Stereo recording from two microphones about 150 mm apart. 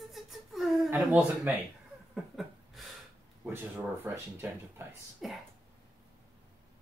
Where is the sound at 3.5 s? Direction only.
15° right (ahead or behind).